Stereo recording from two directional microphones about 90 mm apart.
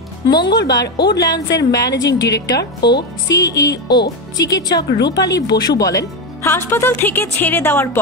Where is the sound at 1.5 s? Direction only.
40° left (ahead or behind).